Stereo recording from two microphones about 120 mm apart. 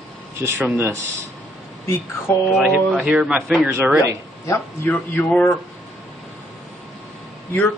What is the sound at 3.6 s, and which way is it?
Speech, 15° right (ahead or behind).